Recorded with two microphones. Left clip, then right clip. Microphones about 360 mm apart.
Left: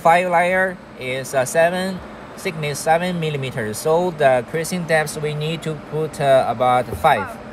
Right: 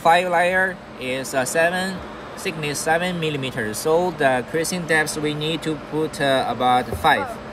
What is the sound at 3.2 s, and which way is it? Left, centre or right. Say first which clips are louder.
Speech: even; centre.